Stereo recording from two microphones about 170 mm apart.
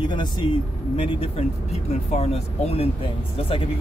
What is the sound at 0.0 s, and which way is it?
Speech, 25° left (ahead or behind).